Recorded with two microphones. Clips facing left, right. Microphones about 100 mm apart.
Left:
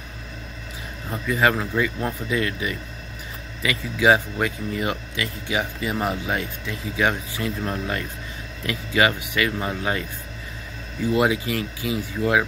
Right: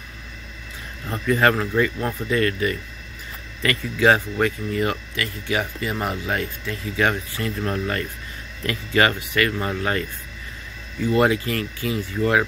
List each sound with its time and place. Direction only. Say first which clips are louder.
1.1 s speech: right 2 dB; 5° left (ahead or behind)
11.1 s speech: right 2 dB; 10° left (ahead or behind)